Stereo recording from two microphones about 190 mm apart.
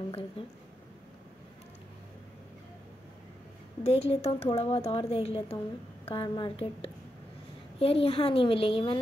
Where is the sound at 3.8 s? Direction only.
35° left (ahead or behind).